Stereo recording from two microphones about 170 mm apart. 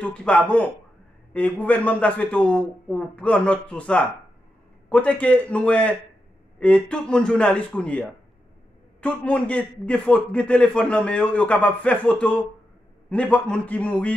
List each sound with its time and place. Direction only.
0.0 s a man's voice: 5° left (ahead or behind)